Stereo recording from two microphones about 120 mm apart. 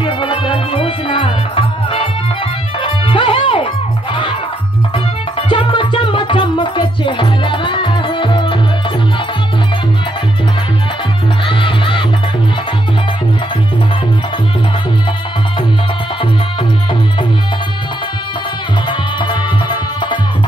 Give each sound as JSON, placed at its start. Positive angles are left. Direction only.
{"t": 0.0, "sound": "music", "side_deg": 45}
{"t": 5.5, "sound": "music", "side_deg": 45}
{"t": 11.4, "sound": "music", "side_deg": 45}
{"t": 18.9, "sound": "music", "side_deg": 40}